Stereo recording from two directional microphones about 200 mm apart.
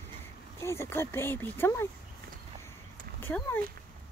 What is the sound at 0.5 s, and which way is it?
Speech, 15° left (ahead or behind).